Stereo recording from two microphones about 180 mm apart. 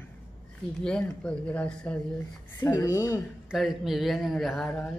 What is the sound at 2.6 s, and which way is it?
Speech, 15° left (ahead or behind).